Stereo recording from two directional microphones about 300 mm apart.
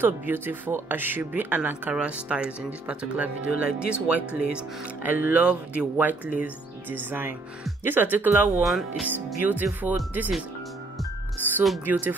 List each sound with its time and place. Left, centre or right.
0.0 s speech: centre
11.5 s speech: centre